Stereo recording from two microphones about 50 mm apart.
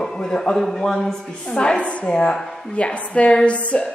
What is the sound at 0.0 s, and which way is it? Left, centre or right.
A man's voice, centre.